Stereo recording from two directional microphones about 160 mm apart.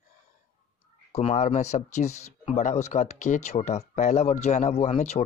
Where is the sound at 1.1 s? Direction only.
40° left (ahead or behind).